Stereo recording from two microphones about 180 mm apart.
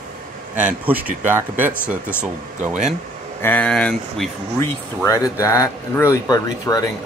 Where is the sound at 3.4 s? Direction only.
10° left (ahead or behind).